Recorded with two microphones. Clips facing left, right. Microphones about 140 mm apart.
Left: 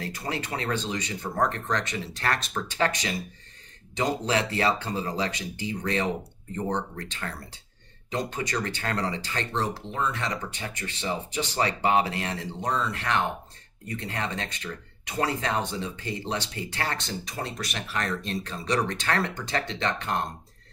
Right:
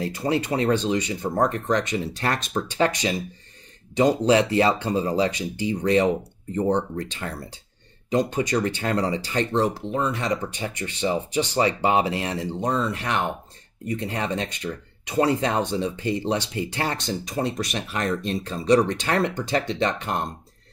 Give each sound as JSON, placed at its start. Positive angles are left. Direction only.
{"t": 0.3, "sound": "speech", "side_deg": -20}